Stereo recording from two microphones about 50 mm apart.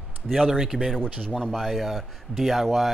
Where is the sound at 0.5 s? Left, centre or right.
Centre.